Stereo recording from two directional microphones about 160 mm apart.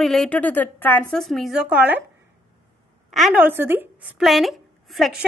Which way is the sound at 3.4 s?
10° right (ahead or behind).